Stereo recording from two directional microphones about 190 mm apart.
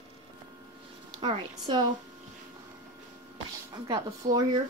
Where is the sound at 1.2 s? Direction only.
25° right (ahead or behind).